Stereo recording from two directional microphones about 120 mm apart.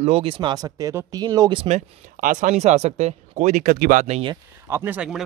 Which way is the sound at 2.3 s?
80° right.